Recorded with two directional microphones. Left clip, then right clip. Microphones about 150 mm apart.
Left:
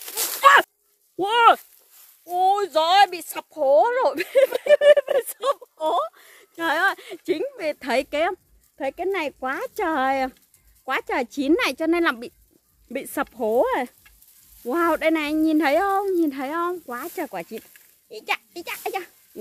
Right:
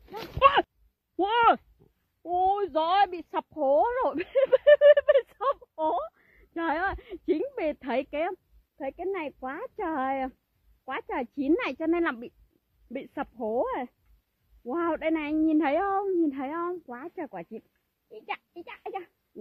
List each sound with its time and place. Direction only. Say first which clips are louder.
0.5 s a sound: left 10 dB; 40° left (ahead or behind)
1.1 s a child's voice: left 6 dB; 10° left (ahead or behind)
2.3 s speech: left 6 dB; 15° right (ahead or behind); by 5.9 s 15° left (ahead or behind)
5.9 s a sound: left 7 dB; 25° left (ahead or behind)
6.8 s speech: left 8 dB; 20° right (ahead or behind); by 12.4 s 5° left (ahead or behind)
13.1 s a child's voice: left 8 dB; 25° left (ahead or behind); by 19.0 s 5° left (ahead or behind)